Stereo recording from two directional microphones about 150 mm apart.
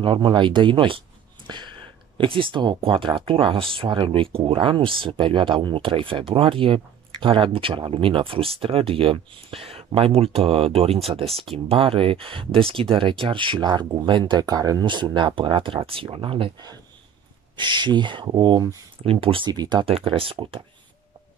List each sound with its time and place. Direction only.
0.0 s speech: 35° right (ahead or behind)